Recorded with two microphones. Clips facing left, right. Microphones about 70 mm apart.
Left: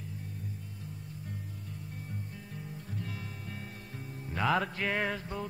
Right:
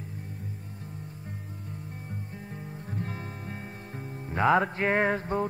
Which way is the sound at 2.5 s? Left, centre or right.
Right.